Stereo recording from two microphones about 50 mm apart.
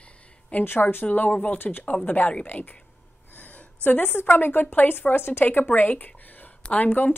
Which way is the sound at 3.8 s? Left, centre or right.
Left.